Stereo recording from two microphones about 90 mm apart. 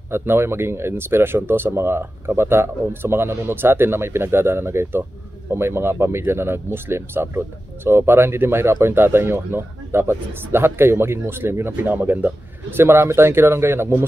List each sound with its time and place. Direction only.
0.1 s speech: 25° right (ahead or behind)